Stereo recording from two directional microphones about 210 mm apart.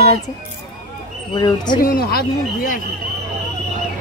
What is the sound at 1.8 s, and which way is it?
Speech, 45° left (ahead or behind).